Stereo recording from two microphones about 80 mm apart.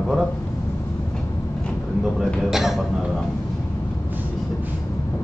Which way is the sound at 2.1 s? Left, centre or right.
Centre.